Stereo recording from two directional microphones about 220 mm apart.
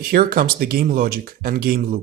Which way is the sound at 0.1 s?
40° right (ahead or behind).